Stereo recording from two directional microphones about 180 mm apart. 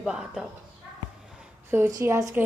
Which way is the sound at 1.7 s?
15° right (ahead or behind).